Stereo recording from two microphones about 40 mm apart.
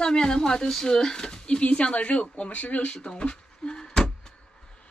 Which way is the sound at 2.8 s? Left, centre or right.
Left.